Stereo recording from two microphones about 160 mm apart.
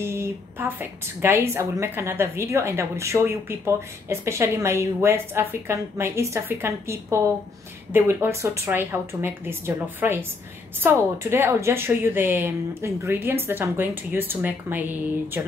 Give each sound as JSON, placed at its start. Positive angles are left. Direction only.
{"t": 0.0, "sound": "a woman's voice", "side_deg": -15}